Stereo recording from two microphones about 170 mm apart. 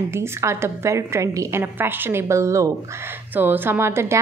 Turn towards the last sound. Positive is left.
turn(degrees=-15)  # may be behind; listen again after turning